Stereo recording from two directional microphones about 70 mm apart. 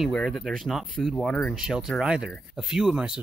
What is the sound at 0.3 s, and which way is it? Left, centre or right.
Speech, centre.